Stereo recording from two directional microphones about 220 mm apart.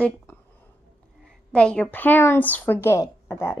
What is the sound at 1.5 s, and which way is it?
Speech, 5° left (ahead or behind).